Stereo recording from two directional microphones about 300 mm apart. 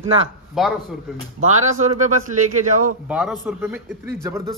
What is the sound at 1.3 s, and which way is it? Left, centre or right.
Speech, right.